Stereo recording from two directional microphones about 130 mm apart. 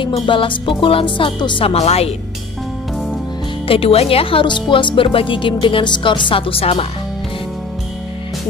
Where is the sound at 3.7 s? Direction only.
45° left (ahead or behind).